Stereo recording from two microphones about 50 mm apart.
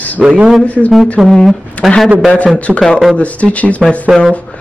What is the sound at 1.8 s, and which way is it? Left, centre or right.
Speech, left.